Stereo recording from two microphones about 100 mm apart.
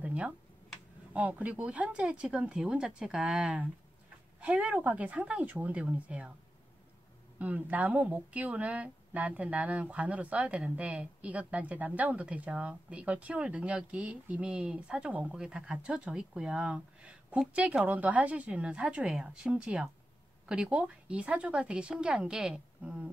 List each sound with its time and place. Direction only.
0.0 s a sound: 15° right (ahead or behind)
1.1 s speech: 15° right (ahead or behind)
7.3 s speech: 15° right (ahead or behind)